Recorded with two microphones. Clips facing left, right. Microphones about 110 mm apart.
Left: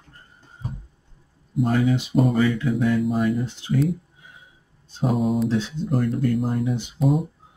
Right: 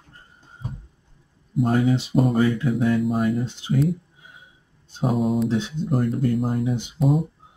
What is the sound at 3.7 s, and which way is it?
Speech, centre (ahead or behind).